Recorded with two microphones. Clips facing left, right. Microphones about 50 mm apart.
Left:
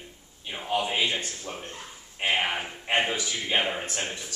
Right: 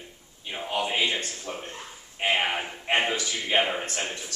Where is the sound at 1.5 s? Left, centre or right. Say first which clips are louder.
Right 2 dB; centre.